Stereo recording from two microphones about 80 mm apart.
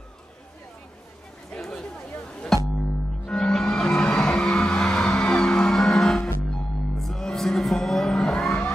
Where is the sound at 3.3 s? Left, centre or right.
Centre.